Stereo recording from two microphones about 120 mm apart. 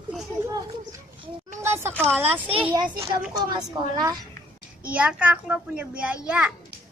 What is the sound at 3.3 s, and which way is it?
Speech, 35° right (ahead or behind).